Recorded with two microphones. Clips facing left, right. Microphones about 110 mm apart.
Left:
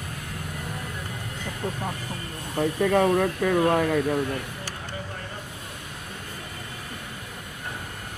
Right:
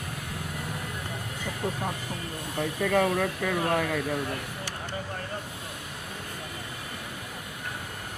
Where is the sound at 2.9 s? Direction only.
35° left (ahead or behind).